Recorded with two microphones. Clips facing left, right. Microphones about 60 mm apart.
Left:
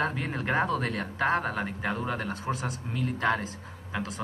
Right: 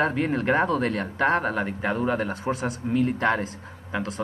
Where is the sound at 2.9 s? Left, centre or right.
Right.